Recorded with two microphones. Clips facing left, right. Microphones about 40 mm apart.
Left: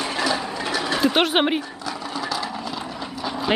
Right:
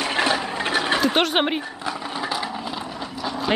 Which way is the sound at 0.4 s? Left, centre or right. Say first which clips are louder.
Right 2 dB; right.